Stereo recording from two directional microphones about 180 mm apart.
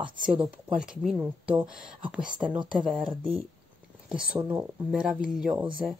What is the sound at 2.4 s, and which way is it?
Speech, 25° right (ahead or behind).